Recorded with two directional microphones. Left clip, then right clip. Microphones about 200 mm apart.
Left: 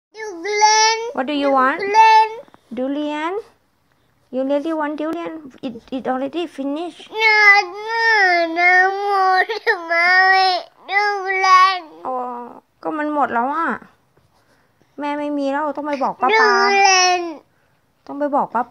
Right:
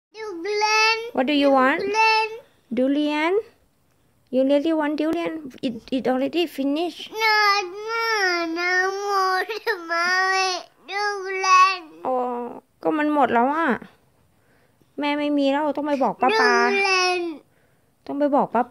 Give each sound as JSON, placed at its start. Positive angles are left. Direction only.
{"t": 0.1, "sound": "child singing", "side_deg": 0}
{"t": 0.6, "sound": "babbling", "side_deg": -20}
{"t": 1.8, "sound": "a sound", "side_deg": -10}
{"t": 2.7, "sound": "speech", "side_deg": -40}
{"t": 3.0, "sound": "speech", "side_deg": -30}
{"t": 7.5, "sound": "speech", "side_deg": -10}
{"t": 8.9, "sound": "speech", "side_deg": -25}
{"t": 9.3, "sound": "speech", "side_deg": -10}
{"t": 12.0, "sound": "speech", "side_deg": -30}
{"t": 15.0, "sound": "speech", "side_deg": -25}
{"t": 18.0, "sound": "speech", "side_deg": -25}